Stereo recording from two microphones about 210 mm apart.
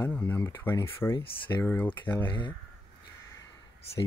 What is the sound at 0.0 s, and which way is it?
Speech, 10° left (ahead or behind).